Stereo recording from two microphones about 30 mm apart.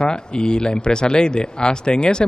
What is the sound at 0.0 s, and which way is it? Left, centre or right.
Speech, left.